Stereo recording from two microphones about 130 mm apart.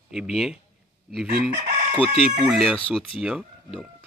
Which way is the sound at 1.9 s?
45° left (ahead or behind).